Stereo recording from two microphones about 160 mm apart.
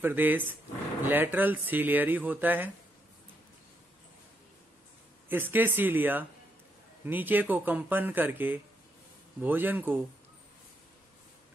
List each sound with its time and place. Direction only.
0.0 s speech: 10° right (ahead or behind)
5.3 s speech: 10° right (ahead or behind)